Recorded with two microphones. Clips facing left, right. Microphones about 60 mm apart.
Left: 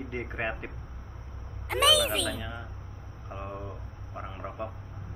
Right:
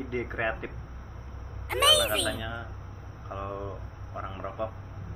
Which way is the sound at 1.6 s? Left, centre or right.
Centre.